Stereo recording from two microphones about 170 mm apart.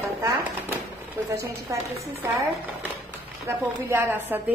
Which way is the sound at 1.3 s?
20° right (ahead or behind).